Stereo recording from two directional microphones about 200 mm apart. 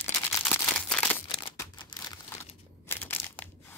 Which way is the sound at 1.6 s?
20° left (ahead or behind).